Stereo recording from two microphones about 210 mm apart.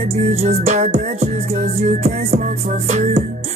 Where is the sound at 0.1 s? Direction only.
30° right (ahead or behind).